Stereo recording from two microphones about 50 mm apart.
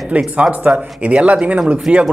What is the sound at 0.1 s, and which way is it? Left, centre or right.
Speech, right.